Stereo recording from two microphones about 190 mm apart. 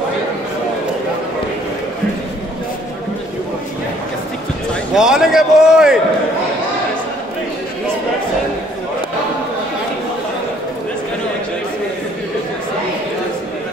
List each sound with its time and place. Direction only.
4.9 s a man's voice: 5° right (ahead or behind)